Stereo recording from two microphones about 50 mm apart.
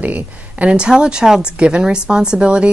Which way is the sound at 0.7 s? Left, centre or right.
Centre.